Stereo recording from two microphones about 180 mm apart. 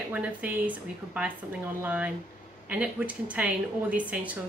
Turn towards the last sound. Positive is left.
turn(degrees=-10)  # may be behind; listen again after turning